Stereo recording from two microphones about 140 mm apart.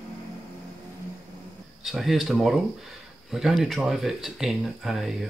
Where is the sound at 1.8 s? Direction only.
Centre (ahead or behind).